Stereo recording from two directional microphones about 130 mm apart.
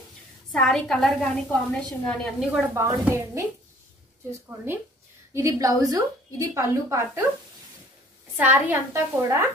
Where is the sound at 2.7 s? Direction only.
20° right (ahead or behind).